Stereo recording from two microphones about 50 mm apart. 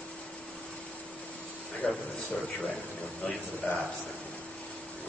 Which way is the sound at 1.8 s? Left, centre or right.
Left.